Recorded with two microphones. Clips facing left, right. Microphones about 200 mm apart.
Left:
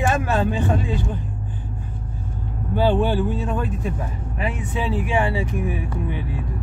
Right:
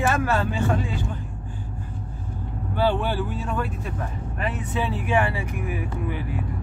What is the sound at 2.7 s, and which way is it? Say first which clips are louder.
Speech: left 4 dB; 15° left (ahead or behind).